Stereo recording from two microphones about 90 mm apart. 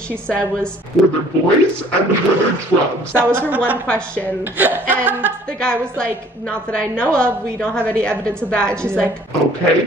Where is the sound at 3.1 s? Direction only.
25° right (ahead or behind).